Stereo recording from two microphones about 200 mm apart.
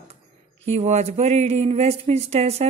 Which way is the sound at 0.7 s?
35° right (ahead or behind).